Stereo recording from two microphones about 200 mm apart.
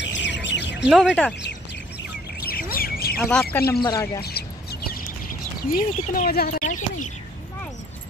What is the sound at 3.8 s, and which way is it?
Speech, 15° left (ahead or behind).